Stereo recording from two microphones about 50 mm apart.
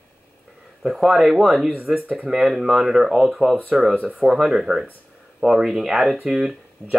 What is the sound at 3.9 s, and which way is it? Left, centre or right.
Speech, right.